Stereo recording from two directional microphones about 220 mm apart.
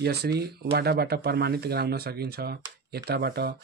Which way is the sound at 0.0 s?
50° right (ahead or behind).